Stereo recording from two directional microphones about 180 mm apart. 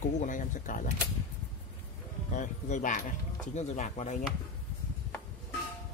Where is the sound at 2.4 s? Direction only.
40° left (ahead or behind).